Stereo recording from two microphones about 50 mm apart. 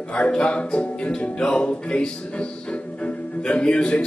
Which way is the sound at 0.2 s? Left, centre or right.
Left.